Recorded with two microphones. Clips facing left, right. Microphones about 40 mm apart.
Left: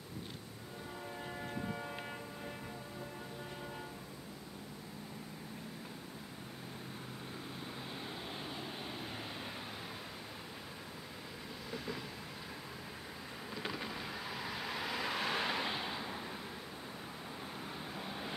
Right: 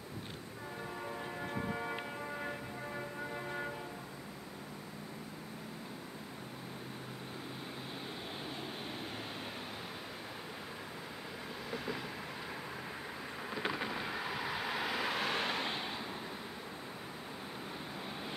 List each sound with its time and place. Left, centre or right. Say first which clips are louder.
1.5 s a sound: right 5 dB; right
11.7 s train: right 3 dB; centre
13.5 s vehicle: right 4 dB; centre
17.9 s vehicle: even; centre